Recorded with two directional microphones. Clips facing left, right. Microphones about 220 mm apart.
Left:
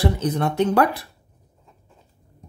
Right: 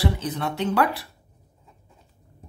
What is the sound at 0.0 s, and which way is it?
Speech, 45° left (ahead or behind).